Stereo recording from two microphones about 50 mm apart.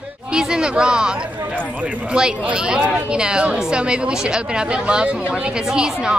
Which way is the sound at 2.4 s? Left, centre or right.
Centre.